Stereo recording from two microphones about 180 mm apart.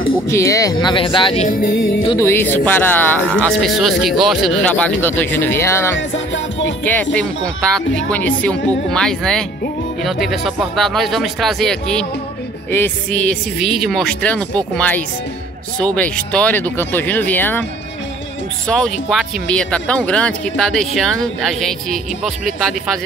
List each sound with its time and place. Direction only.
0.3 s speech: 15° left (ahead or behind)
1.5 s music: 50° left (ahead or behind)
2.1 s speech: 15° left (ahead or behind)
3.6 s speech: centre (ahead or behind)
5.9 s music: 90° left
6.8 s speech: 10° left (ahead or behind)
18.7 s speech: 5° left (ahead or behind)